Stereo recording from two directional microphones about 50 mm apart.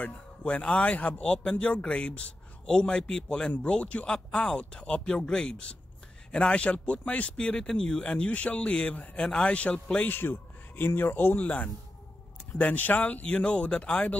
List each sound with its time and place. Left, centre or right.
0.0 s speech: left
10.0 s speech: left
11.4 s speech: left